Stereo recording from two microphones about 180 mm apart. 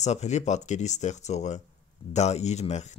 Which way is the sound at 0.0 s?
40° left (ahead or behind).